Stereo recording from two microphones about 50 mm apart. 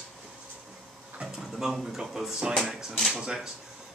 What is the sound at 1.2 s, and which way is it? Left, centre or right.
Speech, centre.